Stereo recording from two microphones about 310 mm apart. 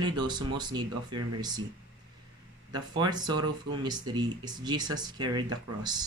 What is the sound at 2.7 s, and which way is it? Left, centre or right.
Speech, centre.